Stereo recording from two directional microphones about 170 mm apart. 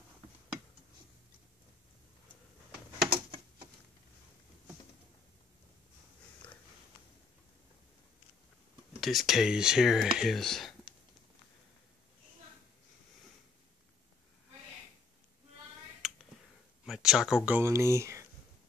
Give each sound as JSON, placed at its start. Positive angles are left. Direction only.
{"t": 9.0, "sound": "speech", "side_deg": 0}
{"t": 16.0, "sound": "finger snapping", "side_deg": 0}
{"t": 16.8, "sound": "a sound", "side_deg": 0}
{"t": 17.5, "sound": "speech", "side_deg": -15}